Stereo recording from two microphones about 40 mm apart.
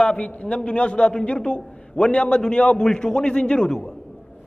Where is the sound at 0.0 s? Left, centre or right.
Left.